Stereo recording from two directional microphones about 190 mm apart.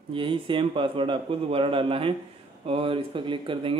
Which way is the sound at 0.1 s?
25° right (ahead or behind).